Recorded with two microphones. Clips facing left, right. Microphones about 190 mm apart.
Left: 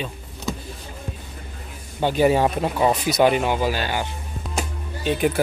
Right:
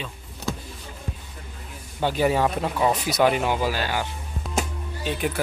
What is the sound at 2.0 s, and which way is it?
Speech, 25° left (ahead or behind).